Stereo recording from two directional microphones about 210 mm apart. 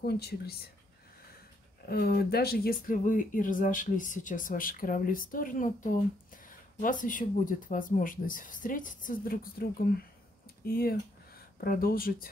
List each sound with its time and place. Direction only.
0.0 s speech: 50° left (ahead or behind)
1.9 s speech: 50° left (ahead or behind)